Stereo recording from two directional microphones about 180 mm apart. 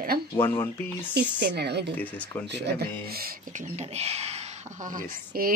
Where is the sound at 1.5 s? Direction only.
65° right (ahead or behind).